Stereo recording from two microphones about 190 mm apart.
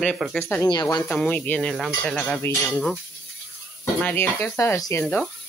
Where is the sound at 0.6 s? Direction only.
20° left (ahead or behind).